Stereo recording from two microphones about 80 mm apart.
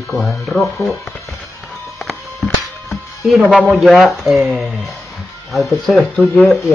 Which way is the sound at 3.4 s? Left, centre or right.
Centre.